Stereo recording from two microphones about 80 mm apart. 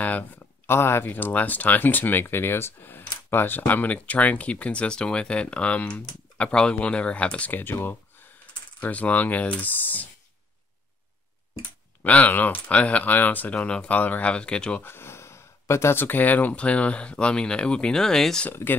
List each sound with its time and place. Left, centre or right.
0.7 s speech: left
12.0 s speech: centre
14.8 s speech: left; by 18.5 s centre
18.5 s speech: left